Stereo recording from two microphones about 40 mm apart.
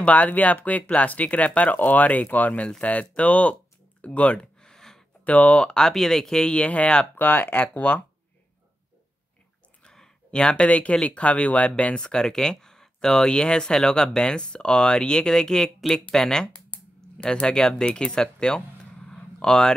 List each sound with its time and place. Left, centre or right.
0.0 s speech: left
4.4 s a sound: centre
5.2 s speech: left
5.8 s speech: centre
6.5 s speech: left
7.2 s speech: left
7.7 s speech: left
9.8 s speech: centre
19.0 s a sound: centre